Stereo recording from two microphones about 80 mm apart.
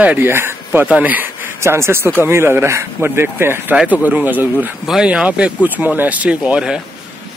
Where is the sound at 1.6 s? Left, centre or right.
Right.